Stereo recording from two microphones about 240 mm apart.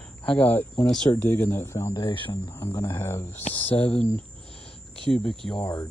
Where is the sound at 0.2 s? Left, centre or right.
Centre.